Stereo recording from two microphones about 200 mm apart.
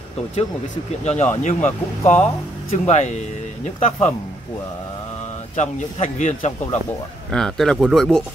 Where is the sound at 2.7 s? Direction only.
35° left (ahead or behind).